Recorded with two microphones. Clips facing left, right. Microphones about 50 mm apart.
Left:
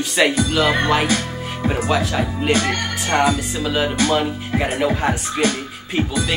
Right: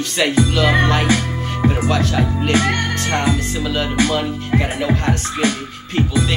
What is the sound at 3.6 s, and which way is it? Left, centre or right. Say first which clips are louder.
Speech: even; centre.